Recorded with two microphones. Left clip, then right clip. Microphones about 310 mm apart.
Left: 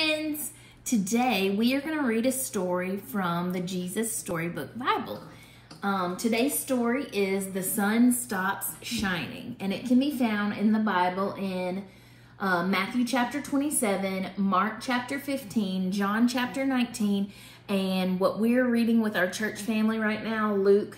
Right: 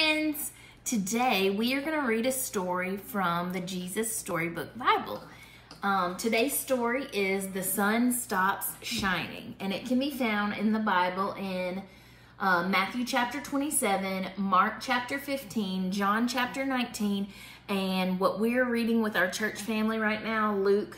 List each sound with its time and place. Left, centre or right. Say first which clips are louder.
0.8 s a woman's voice: left 1 dB; centre